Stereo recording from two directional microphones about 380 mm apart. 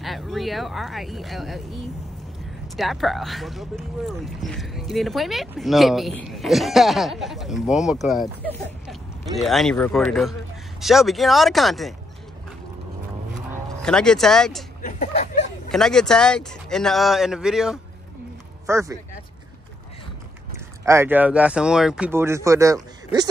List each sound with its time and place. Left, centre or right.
0.0 s speech: centre
13.8 s speech: centre
14.8 s a sound: centre
15.7 s speech: centre
20.5 s speech: centre